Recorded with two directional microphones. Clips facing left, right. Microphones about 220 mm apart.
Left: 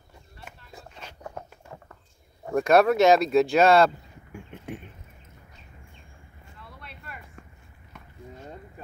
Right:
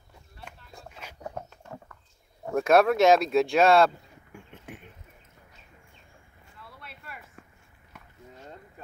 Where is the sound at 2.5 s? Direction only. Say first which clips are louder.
Left 1 dB; centre (ahead or behind).